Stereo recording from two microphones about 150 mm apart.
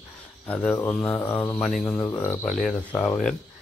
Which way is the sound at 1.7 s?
Centre (ahead or behind).